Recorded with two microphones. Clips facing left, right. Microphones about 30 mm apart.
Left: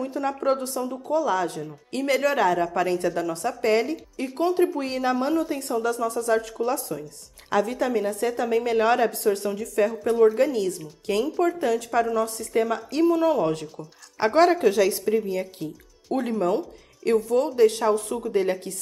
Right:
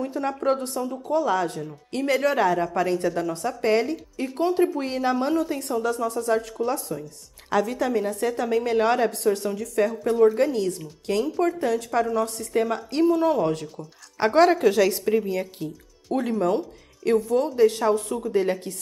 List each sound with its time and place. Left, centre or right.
0.0 s a woman's voice: centre
1.2 s speech: centre
2.0 s a woman's voice: centre
12.5 s speech: centre
13.5 s speech: centre
15.6 s speech: centre
17.5 s a woman's voice: centre
17.7 s a woman's voice: centre